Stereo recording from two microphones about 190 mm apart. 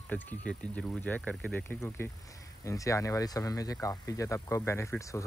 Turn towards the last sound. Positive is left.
turn(degrees=15)  # may be behind; listen again after turning